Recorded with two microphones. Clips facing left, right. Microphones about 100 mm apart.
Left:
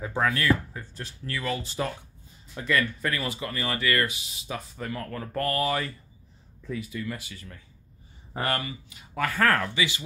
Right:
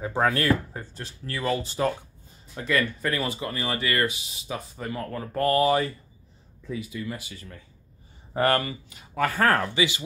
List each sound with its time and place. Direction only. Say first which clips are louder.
0.2 s speech: right 2 dB; 40° right (ahead or behind)
1.0 s speech: right 3 dB; 30° right (ahead or behind)
8.4 s speech: right 6 dB; 45° right (ahead or behind)
9.3 s speech: even; 25° right (ahead or behind)